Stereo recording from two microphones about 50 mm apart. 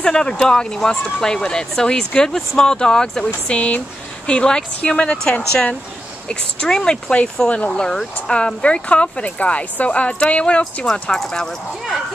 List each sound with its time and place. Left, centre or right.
0.0 s speech: centre
3.4 s speech: left
10.9 s speech: centre